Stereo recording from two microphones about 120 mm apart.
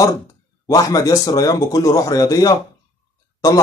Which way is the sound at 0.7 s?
30° left (ahead or behind).